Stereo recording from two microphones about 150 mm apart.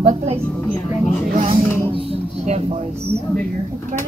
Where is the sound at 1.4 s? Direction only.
40° right (ahead or behind).